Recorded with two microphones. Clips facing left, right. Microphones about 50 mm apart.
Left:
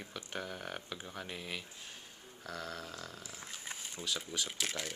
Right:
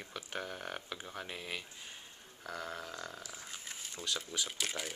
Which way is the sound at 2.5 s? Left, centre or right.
Right.